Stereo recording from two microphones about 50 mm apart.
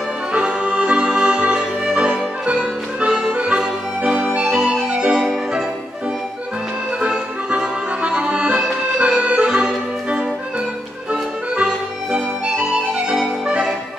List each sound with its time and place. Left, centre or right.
0.3 s music: centre
4.1 s organ: right
7.0 s accordion: centre
11.1 s music: right